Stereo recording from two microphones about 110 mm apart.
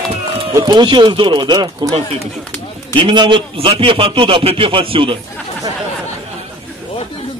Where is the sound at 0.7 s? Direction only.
45° right (ahead or behind).